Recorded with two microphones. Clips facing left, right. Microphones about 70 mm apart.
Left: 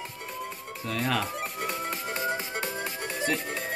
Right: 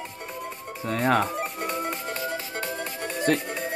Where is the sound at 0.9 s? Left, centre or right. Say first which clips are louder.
Right 6 dB; right.